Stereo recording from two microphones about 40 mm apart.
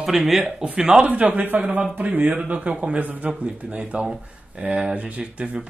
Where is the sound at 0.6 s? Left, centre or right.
Right.